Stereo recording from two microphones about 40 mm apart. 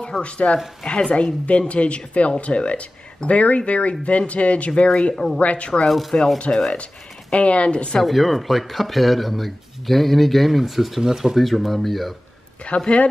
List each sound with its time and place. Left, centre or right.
0.2 s speech: left
1.1 s speech: left
5.1 s speech: centre
5.4 s speech: left
5.9 s speech: centre
6.3 s speech: left
8.0 s speech: centre
11.0 s speech: centre
11.3 s speech: centre
12.6 s speech: left